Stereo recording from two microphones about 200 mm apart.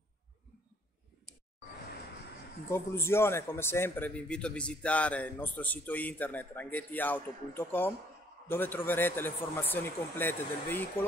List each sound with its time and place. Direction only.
2.7 s a man's voice: 10° left (ahead or behind)